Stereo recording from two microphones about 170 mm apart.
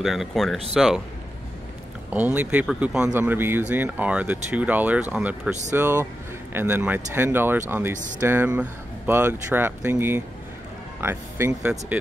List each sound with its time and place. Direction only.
0.0 s speech: centre (ahead or behind)
2.0 s speech: 10° right (ahead or behind)